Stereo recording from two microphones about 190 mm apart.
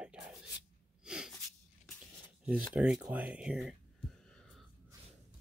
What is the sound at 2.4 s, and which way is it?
Speech, 5° right (ahead or behind).